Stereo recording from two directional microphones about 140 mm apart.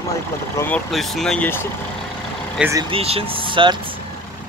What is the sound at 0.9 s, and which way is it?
Speech, centre (ahead or behind).